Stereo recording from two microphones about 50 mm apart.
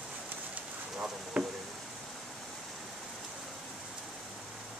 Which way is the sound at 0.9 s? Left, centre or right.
Right.